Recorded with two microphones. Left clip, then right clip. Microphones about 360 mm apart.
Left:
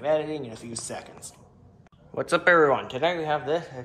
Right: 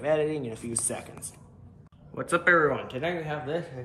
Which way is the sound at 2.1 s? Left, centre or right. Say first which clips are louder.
Left 2 dB; centre.